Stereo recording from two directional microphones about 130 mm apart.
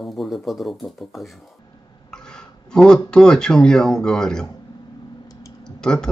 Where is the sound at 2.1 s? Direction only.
5° left (ahead or behind).